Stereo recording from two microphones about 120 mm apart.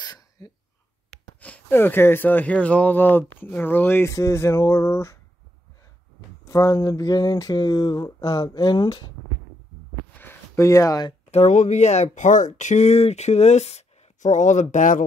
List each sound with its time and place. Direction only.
0.0 s throat clearing: 35° left (ahead or behind)
1.4 s speech: 15° left (ahead or behind)
6.5 s speech: 25° left (ahead or behind)
10.1 s a sound: 20° left (ahead or behind)
11.2 s speech: 70° left (ahead or behind); by 15.0 s 90° left